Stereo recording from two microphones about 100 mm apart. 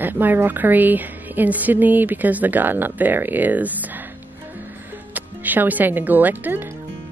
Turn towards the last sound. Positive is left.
turn(degrees=-20)  # may be behind; listen again after turning